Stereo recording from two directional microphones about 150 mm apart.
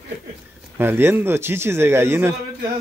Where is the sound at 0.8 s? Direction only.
15° right (ahead or behind).